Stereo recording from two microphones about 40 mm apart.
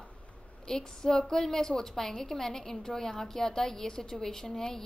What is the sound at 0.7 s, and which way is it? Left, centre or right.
A woman's voice, centre.